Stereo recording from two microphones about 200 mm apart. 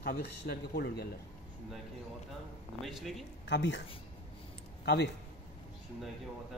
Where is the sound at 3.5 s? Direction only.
60° left (ahead or behind).